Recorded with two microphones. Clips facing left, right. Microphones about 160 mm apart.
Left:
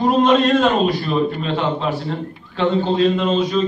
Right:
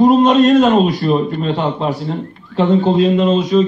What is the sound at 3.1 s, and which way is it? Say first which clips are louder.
Speech: right 5 dB; centre (ahead or behind).